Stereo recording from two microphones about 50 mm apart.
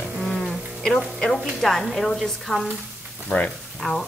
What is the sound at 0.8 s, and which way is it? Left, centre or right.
Frying, centre.